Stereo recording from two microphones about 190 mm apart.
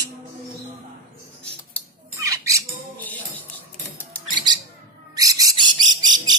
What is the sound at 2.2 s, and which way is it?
Squawk, 15° right (ahead or behind).